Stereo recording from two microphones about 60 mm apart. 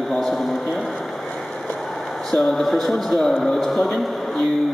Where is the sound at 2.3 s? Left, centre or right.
Centre.